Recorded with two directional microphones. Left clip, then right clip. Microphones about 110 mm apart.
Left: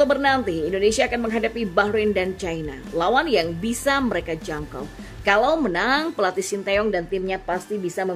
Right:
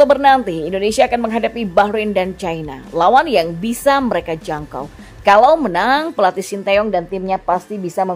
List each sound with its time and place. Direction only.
0.0 s a woman's voice: 40° right (ahead or behind)